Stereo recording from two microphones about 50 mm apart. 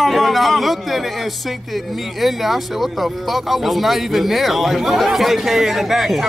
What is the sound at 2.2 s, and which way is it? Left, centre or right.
Speech, centre.